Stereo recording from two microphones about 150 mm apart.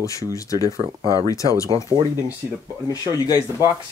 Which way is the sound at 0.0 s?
20° left (ahead or behind).